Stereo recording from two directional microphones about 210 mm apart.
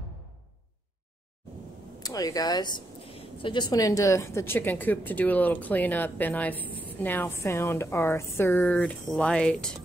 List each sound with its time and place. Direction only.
2.0 s speech: 15° left (ahead or behind)